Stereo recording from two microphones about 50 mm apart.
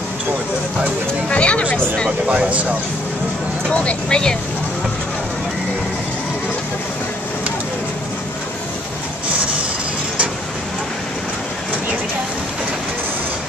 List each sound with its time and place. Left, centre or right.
1.3 s a sound: left
2.2 s speech: right
3.7 s speech: left